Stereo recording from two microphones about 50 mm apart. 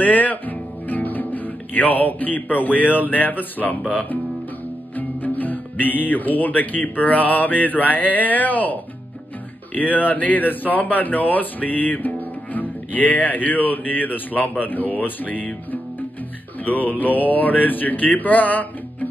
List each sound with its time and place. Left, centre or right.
0.0 s speech: left
9.8 s mantra: left
12.5 s speech: left
16.6 s mantra: left